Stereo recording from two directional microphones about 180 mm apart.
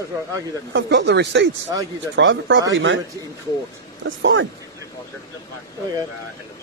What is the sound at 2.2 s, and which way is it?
Speech, 90° right.